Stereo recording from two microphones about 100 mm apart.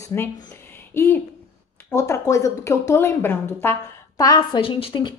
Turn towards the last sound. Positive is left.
turn(degrees=50)  # may be behind; listen again after turning